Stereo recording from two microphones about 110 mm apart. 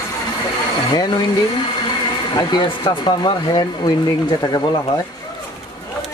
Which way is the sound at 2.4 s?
40° left (ahead or behind).